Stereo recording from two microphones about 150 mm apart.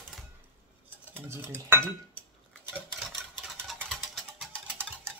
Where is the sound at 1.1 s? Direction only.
15° right (ahead or behind).